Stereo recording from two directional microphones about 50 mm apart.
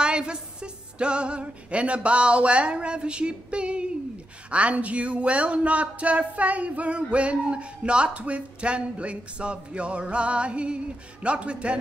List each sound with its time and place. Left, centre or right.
0.0 s music: centre
4.5 s speech: right